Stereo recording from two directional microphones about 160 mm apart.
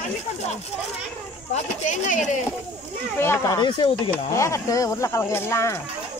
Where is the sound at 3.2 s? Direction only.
15° left (ahead or behind).